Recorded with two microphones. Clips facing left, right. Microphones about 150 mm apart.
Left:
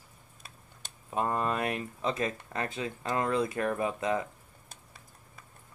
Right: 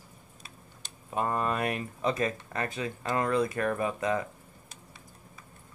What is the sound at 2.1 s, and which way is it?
Speech, 20° left (ahead or behind).